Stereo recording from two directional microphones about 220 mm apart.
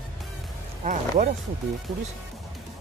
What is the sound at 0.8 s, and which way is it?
Speech, 35° right (ahead or behind).